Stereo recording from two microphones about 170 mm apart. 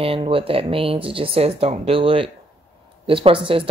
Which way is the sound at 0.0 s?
35° right (ahead or behind).